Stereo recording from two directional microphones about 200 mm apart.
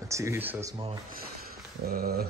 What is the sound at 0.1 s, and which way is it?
Speech, 15° right (ahead or behind).